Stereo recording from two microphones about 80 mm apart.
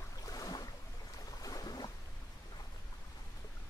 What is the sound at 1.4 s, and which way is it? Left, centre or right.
Boat, left.